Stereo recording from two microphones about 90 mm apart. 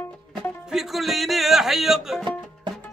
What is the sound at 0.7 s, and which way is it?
Music, 5° right (ahead or behind).